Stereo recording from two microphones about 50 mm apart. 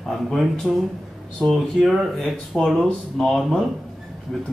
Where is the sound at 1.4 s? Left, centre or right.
Centre.